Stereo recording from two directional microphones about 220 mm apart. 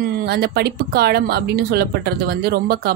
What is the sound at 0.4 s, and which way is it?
Speech, 45° right (ahead or behind).